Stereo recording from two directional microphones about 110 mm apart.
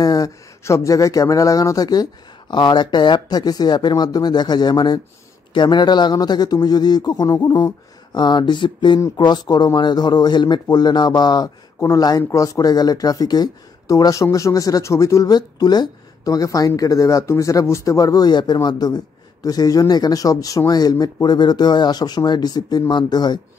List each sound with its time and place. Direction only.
0.0 s speech: 35° left (ahead or behind)
15.3 s speech: 40° left (ahead or behind)